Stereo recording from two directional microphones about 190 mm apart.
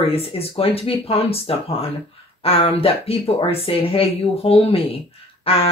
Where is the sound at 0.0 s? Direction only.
30° left (ahead or behind).